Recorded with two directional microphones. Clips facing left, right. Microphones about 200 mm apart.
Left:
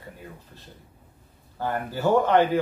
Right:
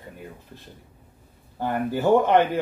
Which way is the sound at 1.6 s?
15° right (ahead or behind).